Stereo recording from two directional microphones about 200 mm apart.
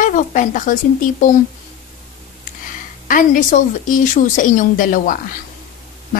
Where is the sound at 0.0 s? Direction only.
40° left (ahead or behind).